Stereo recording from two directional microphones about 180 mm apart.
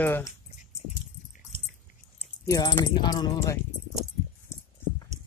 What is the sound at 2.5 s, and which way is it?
Speech, 25° left (ahead or behind).